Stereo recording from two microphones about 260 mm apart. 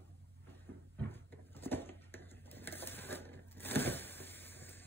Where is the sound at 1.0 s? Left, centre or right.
Centre.